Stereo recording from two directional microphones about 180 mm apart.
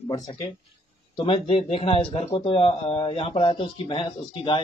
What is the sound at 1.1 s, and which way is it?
A man's voice, 30° left (ahead or behind).